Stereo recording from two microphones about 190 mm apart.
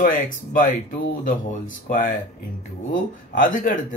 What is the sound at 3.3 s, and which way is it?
Speech, 45° left (ahead or behind).